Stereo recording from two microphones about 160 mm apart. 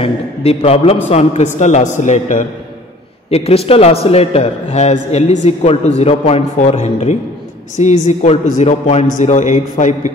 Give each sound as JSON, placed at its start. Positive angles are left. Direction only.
{"t": 0.0, "sound": "a sound", "side_deg": 35}
{"t": 1.1, "sound": "a man's voice", "side_deg": 45}
{"t": 3.3, "sound": "a man's voice", "side_deg": 40}